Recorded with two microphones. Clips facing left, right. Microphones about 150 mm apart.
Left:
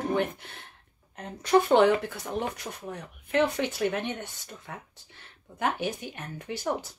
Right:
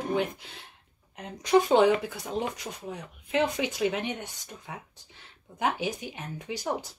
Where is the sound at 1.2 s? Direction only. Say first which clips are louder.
Even; 10° right (ahead or behind).